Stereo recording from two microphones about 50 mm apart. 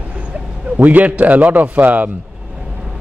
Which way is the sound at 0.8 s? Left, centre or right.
Right.